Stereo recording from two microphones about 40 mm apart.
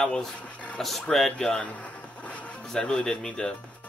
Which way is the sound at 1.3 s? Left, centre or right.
Centre.